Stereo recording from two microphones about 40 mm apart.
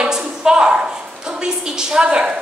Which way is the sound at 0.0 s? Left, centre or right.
Right.